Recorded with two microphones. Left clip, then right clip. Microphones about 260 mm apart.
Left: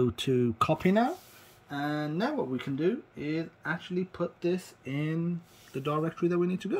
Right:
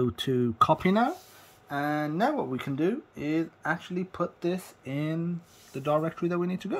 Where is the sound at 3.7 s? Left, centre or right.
Right.